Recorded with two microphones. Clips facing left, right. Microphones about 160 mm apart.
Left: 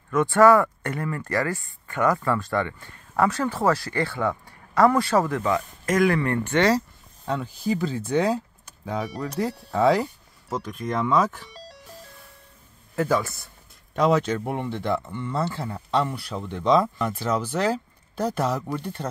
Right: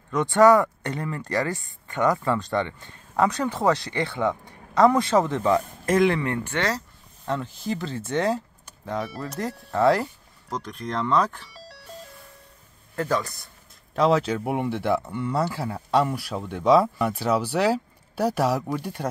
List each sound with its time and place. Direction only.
0.1 s speech: 20° right (ahead or behind)
7.2 s speech: centre (ahead or behind)
12.9 s speech: 5° left (ahead or behind); by 19.0 s 10° right (ahead or behind)